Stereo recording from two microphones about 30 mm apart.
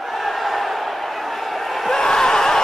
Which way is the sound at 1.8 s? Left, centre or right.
Centre.